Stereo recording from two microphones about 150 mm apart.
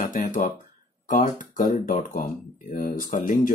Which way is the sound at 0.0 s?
60° left (ahead or behind).